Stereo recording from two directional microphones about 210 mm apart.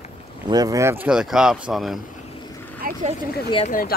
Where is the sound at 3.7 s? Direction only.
40° left (ahead or behind).